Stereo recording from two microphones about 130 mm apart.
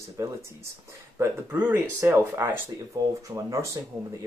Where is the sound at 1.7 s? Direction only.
20° right (ahead or behind).